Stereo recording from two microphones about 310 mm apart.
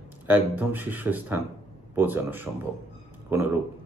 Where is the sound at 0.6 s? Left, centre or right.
Centre.